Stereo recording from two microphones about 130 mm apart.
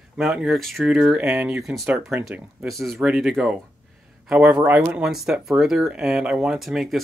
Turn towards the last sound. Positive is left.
turn(degrees=0)  # may be behind; listen again after turning